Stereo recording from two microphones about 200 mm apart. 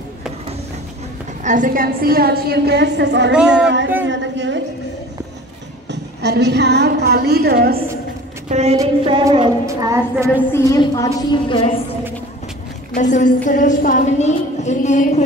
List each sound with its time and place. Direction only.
1.4 s a woman's voice: 40° right (ahead or behind); by 3.3 s 60° right (ahead or behind)
3.3 s child singing: 5° right (ahead or behind)
3.6 s a woman's voice: 60° right (ahead or behind)
5.9 s a woman's voice: 55° right (ahead or behind)
8.5 s a woman's voice: 35° right (ahead or behind)
8.7 s a sound: 20° right (ahead or behind)
9.7 s child singing: 15° right (ahead or behind)
10.5 s a woman's voice: 15° left (ahead or behind)
12.9 s a woman's voice: 40° left (ahead or behind)